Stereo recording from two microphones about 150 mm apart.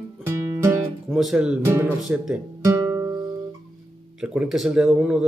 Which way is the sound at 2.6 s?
20° right (ahead or behind).